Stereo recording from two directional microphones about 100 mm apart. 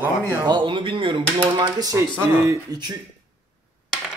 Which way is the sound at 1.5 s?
40° right (ahead or behind).